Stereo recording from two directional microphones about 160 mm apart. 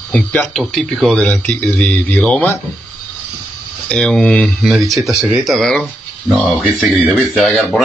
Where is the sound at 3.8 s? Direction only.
5° left (ahead or behind).